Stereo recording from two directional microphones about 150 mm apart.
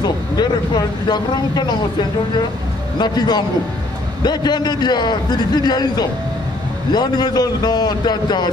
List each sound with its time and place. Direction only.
0.4 s a man's voice: 30° left (ahead or behind)
3.0 s a man's voice: 30° left (ahead or behind)